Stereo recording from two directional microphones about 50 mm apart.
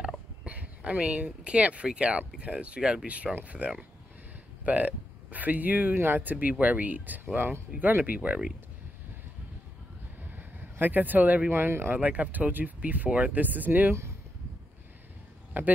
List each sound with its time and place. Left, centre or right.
0.5 s a sound: right
1.1 s speech: right
7.3 s speech: right
8.0 s speech: right
10.3 s a sound: right
11.5 s speech: right
12.0 s speech: right
15.5 s speech: right